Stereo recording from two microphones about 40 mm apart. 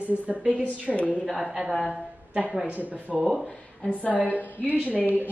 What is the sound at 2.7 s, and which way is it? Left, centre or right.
Speech, right.